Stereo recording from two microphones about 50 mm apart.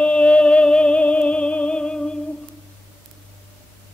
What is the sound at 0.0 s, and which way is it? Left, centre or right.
Music, left.